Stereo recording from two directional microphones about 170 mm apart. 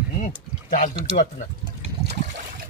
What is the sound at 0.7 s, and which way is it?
Speech, 50° left (ahead or behind).